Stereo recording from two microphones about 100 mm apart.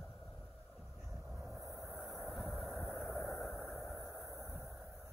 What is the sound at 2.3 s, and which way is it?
Vehicle, centre (ahead or behind).